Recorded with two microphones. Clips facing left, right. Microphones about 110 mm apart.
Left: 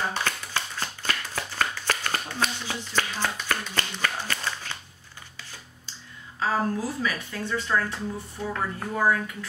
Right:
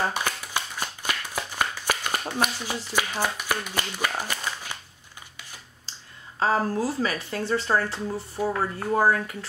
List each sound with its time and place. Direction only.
0.1 s shuffling cards: 15° right (ahead or behind)
2.4 s speech: 10° right (ahead or behind)
6.4 s speech: 35° right (ahead or behind)